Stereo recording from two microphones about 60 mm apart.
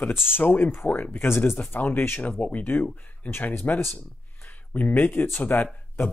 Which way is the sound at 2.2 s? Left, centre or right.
Left.